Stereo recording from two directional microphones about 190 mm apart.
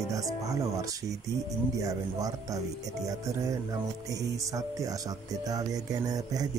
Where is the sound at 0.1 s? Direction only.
20° right (ahead or behind).